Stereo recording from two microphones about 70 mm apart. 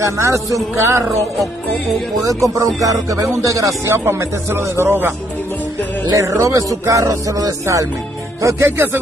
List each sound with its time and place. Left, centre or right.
0.0 s speech: right
2.2 s speech: right
6.1 s speech: right